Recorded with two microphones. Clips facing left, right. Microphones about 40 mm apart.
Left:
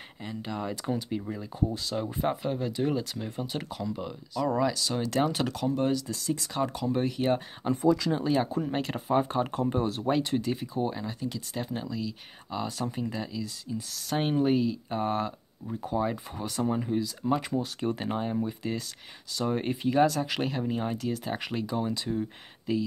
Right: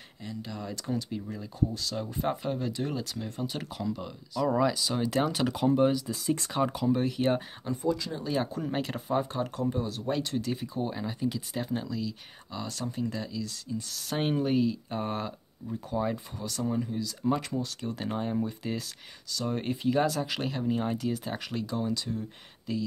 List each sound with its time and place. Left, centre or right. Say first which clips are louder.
0.2 s speech: left 4 dB; left
2.2 s speech: even; centre
5.5 s speech: right 3 dB; centre
6.9 s speech: left 1 dB; centre
7.6 s speech: left 7 dB; left
8.3 s speech: even; centre
9.2 s speech: left 3 dB; left
10.1 s speech: left 1 dB; centre
10.5 s speech: left 2 dB; centre
13.9 s speech: left 2 dB; centre
16.4 s speech: left 2 dB; left
17.3 s speech: left 1 dB; centre
21.5 s speech: even; centre